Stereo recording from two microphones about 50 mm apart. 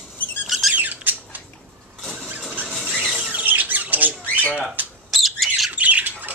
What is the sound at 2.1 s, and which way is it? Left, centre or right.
Vehicle, right.